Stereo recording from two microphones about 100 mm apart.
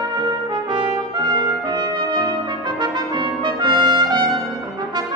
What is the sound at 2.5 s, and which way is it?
Trumpet, 45° right (ahead or behind).